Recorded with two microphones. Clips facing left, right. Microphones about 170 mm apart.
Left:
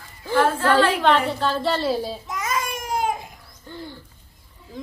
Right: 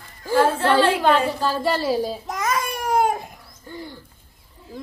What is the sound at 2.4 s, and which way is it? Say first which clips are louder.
Babbling: right 3 dB; 60° right (ahead or behind).